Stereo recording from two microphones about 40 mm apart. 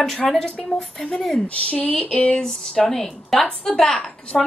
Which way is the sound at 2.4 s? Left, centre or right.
Centre.